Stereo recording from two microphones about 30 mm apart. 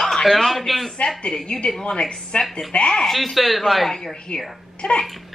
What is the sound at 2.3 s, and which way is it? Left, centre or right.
Speech, left.